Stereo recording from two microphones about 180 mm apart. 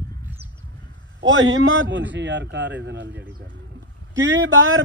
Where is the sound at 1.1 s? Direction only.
90° right; by 3.2 s 75° right (ahead or behind).